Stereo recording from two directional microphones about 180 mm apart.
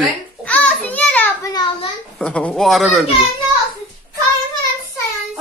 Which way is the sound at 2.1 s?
5° left (ahead or behind).